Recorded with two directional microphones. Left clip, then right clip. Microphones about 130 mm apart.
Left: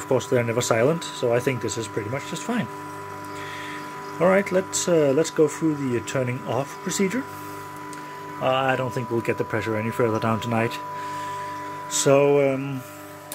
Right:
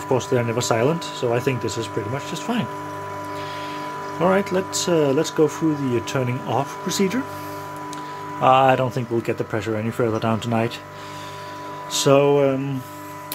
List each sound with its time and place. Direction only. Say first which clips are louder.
0.1 s speech: right 1 dB; centre (ahead or behind)
4.2 s speech: even; centre (ahead or behind)
8.4 s speech: right 7 dB; 30° right (ahead or behind)
9.2 s speech: even; 5° left (ahead or behind)
11.9 s music: right 2 dB; 5° right (ahead or behind)
12.2 s speech: right 1 dB; 10° right (ahead or behind)